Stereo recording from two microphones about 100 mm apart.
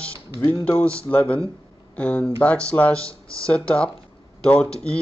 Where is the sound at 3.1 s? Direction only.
30° right (ahead or behind).